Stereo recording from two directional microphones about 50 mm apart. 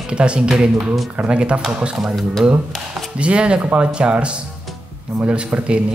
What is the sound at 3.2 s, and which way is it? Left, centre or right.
A man's voice, right.